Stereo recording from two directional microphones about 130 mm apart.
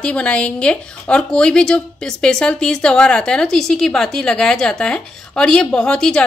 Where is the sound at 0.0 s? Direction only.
10° left (ahead or behind).